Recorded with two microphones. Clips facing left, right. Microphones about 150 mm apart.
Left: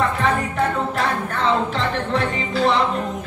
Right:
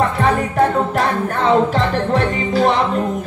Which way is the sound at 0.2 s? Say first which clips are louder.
Right 5 dB; 45° right (ahead or behind).